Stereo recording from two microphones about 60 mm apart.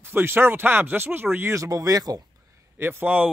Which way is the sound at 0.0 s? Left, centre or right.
Right.